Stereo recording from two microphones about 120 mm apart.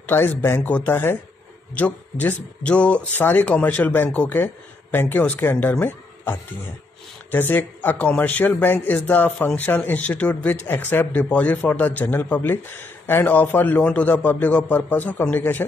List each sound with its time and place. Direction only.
0.0 s a man's voice: 20° left (ahead or behind)